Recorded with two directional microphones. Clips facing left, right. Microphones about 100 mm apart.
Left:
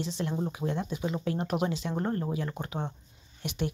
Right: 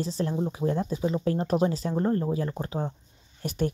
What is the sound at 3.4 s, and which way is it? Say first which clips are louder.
Speech: right 5 dB; 45° right (ahead or behind).